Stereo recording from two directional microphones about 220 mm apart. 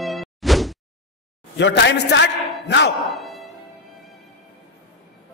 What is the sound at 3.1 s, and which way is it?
Music, centre (ahead or behind).